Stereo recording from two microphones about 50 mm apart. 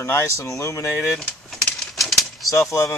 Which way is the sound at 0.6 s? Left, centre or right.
Left.